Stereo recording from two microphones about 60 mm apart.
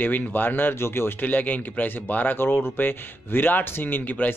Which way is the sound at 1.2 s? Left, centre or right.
Left.